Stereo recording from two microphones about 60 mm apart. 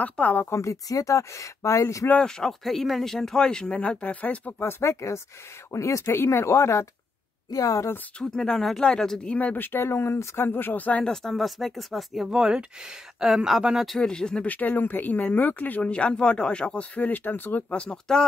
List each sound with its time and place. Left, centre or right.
0.0 s speech: left
0.5 s speech: left
2.1 s speech: centre; by 4.6 s left
4.6 s speech: left
5.7 s speech: left
7.5 s speech: left
8.2 s speech: centre
9.3 s speech: left
9.6 s speech: left
11.3 s speech: centre
13.9 s speech: centre
14.5 s speech: left
15.9 s speech: centre
17.7 s speech: centre